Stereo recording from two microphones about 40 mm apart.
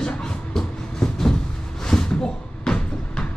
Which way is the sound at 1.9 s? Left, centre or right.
Centre.